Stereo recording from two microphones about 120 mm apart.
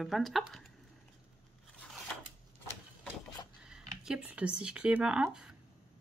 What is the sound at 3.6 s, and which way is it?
Speech, 5° right (ahead or behind).